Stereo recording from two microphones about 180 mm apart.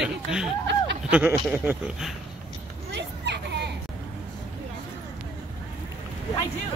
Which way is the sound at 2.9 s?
70° right (ahead or behind).